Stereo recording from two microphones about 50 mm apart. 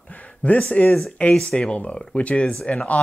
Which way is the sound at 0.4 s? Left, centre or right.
Left.